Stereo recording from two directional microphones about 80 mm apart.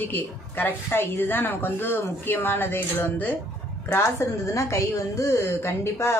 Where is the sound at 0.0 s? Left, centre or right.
Left.